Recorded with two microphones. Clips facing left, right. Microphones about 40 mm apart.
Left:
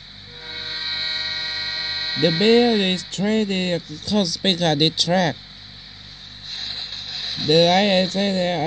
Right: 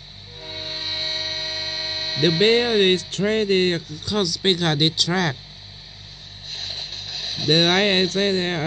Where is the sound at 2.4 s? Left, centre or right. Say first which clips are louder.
Left 2 dB; right.